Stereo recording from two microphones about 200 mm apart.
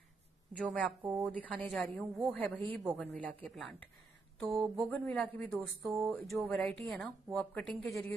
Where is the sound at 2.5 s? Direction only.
25° right (ahead or behind).